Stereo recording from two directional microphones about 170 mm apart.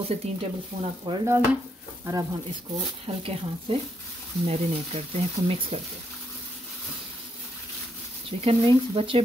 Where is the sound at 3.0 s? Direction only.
30° right (ahead or behind).